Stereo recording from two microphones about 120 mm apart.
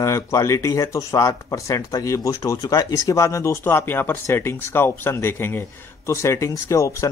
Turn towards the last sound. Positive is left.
turn(degrees=25)  # may be behind; listen again after turning